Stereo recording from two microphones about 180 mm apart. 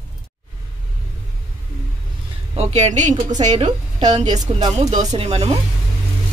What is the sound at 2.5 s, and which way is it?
A woman's voice, 40° right (ahead or behind).